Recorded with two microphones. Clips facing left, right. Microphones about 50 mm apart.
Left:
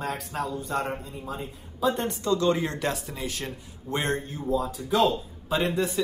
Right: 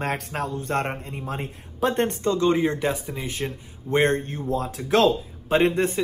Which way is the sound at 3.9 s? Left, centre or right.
Right.